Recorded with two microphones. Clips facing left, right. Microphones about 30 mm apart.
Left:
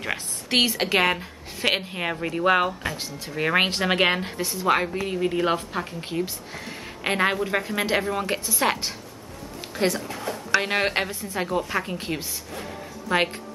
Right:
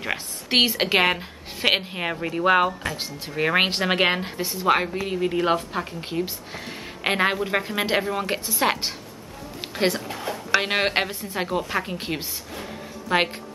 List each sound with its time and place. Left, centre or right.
0.0 s a woman's voice: centre
2.0 s speech: centre
9.6 s music: right
10.1 s speech: centre
12.0 s speech: centre
12.6 s music: centre